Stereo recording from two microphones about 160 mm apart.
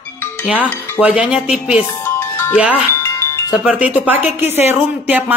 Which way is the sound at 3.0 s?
15° left (ahead or behind).